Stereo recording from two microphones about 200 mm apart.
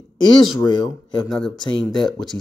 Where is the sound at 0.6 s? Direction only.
20° left (ahead or behind).